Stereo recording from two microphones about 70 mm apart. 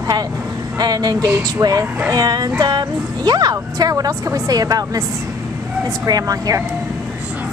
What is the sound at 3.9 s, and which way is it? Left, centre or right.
A woman's voice, right.